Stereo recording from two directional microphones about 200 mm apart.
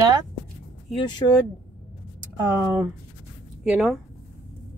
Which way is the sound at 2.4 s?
10° right (ahead or behind).